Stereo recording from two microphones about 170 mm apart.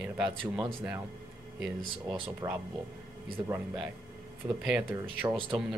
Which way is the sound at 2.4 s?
20° right (ahead or behind).